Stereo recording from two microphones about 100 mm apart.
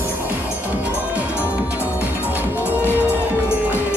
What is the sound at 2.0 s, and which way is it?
Music, 20° right (ahead or behind).